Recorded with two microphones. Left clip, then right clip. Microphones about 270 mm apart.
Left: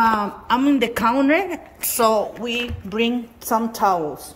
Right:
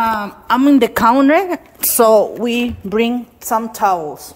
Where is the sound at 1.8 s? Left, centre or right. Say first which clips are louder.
Right 8 dB; right.